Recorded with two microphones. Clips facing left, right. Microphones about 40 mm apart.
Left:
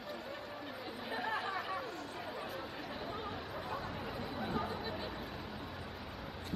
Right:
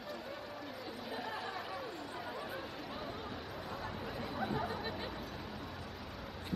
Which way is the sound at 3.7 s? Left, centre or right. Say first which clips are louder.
Even; centre.